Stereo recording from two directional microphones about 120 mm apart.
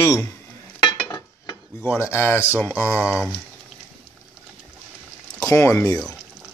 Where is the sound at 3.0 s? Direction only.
5° right (ahead or behind).